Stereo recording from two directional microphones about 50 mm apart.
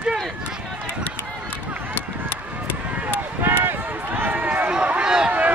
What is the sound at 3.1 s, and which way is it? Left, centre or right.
Run, right.